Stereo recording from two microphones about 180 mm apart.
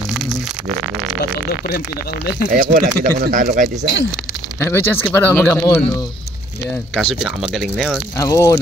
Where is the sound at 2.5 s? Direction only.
50° right (ahead or behind).